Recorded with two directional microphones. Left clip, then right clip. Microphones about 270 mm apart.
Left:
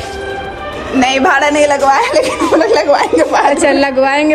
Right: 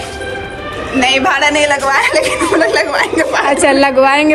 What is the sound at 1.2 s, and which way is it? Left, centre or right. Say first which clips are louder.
A woman's voice: left 2 dB; left.